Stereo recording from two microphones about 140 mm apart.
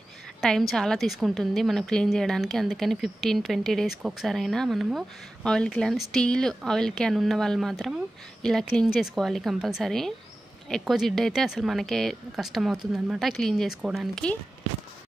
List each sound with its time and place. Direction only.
0.4 s a woman's voice: centre (ahead or behind)